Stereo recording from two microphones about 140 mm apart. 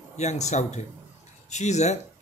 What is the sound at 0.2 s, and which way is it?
A man's voice, 55° left (ahead or behind).